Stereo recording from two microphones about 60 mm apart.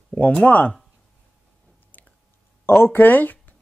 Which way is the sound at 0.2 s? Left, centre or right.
Left.